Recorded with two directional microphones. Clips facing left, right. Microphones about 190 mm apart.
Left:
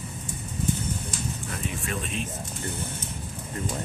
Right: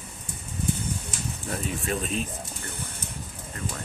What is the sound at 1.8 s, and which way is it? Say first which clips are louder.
Speech: right 3 dB; 35° right (ahead or behind).